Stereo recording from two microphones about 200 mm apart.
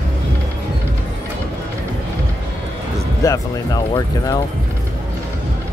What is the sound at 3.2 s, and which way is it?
Speech, 15° left (ahead or behind).